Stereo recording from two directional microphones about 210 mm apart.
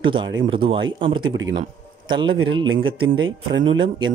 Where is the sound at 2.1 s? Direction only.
20° right (ahead or behind).